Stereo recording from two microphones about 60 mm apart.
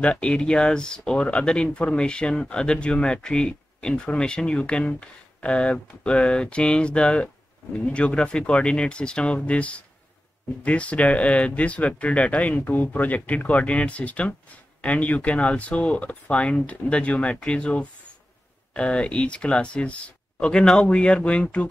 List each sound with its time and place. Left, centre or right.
0.0 s speech: centre